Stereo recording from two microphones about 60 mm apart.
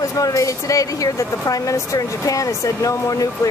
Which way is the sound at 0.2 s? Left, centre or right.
Left.